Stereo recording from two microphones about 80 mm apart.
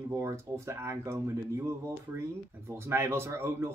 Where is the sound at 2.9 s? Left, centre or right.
Right.